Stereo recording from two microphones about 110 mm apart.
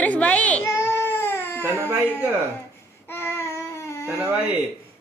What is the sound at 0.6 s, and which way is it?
Baby cry, 25° left (ahead or behind).